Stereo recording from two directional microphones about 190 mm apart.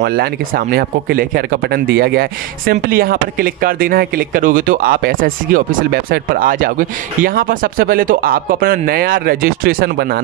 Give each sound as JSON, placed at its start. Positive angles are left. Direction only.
{"t": 0.0, "sound": "speech", "side_deg": -55}